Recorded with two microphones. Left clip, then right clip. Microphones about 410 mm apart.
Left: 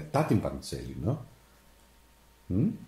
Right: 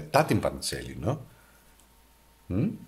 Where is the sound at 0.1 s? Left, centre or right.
Right.